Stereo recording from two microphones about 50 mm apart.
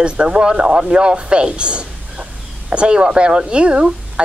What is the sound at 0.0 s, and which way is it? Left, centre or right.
Speech, centre.